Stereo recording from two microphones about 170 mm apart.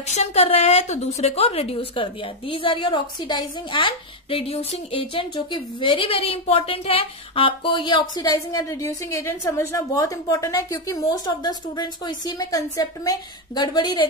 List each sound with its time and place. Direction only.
0.0 s a woman's voice: 40° left (ahead or behind)